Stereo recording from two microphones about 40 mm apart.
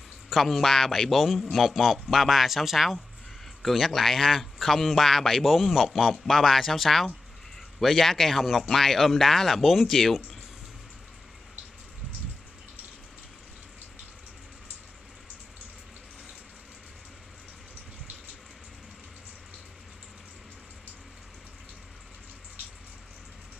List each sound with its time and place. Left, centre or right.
0.3 s speech: centre
1.1 s speech: centre